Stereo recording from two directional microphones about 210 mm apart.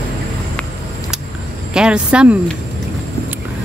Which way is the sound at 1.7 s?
5° right (ahead or behind).